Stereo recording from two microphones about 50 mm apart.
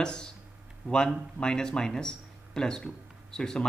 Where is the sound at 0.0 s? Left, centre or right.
Centre.